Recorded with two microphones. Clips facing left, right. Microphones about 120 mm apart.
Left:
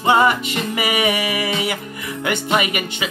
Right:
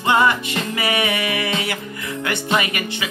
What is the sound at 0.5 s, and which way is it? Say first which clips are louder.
Music: left 1 dB; 15° left (ahead or behind).